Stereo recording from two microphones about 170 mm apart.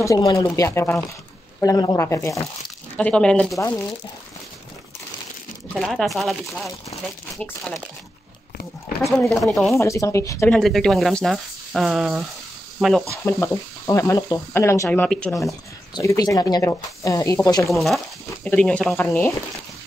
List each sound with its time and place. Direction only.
0.0 s speech: 20° left (ahead or behind)
3.5 s speech: 20° left (ahead or behind)
5.8 s speech: centre (ahead or behind)
9.3 s speech: centre (ahead or behind)
9.8 s speech: 20° left (ahead or behind)
10.5 s speech: centre (ahead or behind)
13.1 s speech: 15° left (ahead or behind)
15.9 s speech: 20° left (ahead or behind)
17.7 s speech: centre (ahead or behind); by 19.3 s 15° left (ahead or behind)